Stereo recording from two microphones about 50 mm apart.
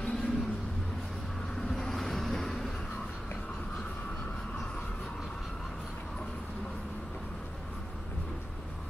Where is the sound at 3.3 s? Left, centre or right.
Centre.